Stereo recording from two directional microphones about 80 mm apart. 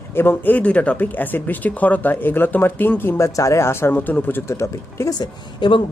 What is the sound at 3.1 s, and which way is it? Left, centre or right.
Speech, left.